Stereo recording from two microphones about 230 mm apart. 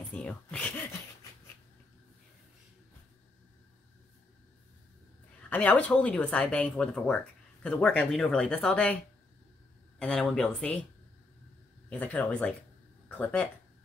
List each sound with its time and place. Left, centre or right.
0.1 s speech: centre
5.5 s speech: centre
11.9 s speech: centre